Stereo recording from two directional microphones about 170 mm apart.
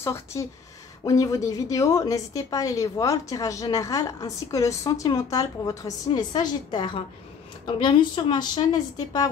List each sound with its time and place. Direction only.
0.0 s a woman's voice: 15° left (ahead or behind)